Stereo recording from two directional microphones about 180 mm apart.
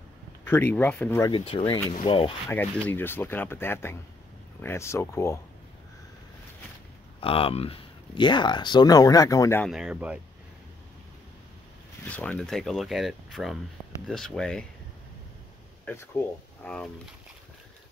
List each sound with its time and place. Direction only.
0.5 s speech: 10° left (ahead or behind)
1.2 s speech: 30° left (ahead or behind)
2.9 s speech: 10° left (ahead or behind)
7.2 s speech: 30° left (ahead or behind); by 9.7 s 15° left (ahead or behind)
9.7 s speech: 5° right (ahead or behind)
12.0 s speech: 10° left (ahead or behind)
15.8 s speech: 10° left (ahead or behind)